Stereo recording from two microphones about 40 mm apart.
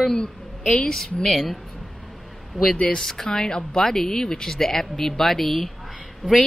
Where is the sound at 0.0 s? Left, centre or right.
Centre.